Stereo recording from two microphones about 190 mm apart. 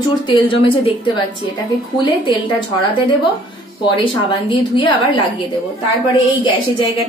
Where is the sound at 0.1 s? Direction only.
25° left (ahead or behind).